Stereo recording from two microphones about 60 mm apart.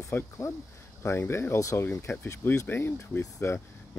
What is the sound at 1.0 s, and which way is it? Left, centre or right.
Speech, left.